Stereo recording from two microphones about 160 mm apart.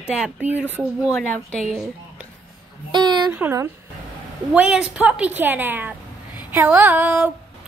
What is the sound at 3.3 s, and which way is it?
A woman's voice, 15° right (ahead or behind).